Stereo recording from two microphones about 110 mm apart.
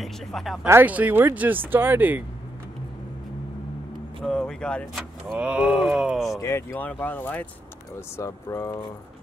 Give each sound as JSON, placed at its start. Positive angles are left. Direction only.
{"t": 0.0, "sound": "speech", "side_deg": 0}
{"t": 0.7, "sound": "speech", "side_deg": -20}
{"t": 4.2, "sound": "speech", "side_deg": 5}
{"t": 4.9, "sound": "speech", "side_deg": -10}
{"t": 6.3, "sound": "speech", "side_deg": 25}
{"t": 6.8, "sound": "speech", "side_deg": 15}
{"t": 8.2, "sound": "speech", "side_deg": 30}